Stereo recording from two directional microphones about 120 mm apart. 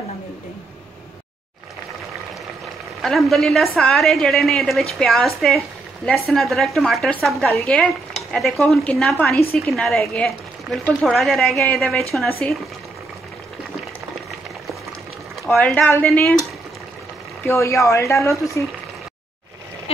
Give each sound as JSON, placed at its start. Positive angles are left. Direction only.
{"t": 3.0, "sound": "a woman's voice", "side_deg": 0}
{"t": 15.5, "sound": "speech", "side_deg": 10}
{"t": 17.4, "sound": "speech", "side_deg": 25}